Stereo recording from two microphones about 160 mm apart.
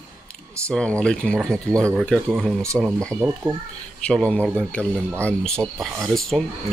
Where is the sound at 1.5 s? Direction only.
20° right (ahead or behind).